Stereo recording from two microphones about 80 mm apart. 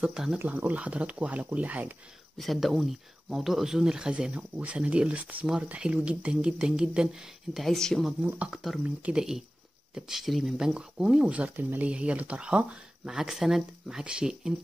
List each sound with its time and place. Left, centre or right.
0.0 s speech: centre
0.5 s speech: centre
2.3 s speech: centre
8.2 s speech: right
9.0 s speech: centre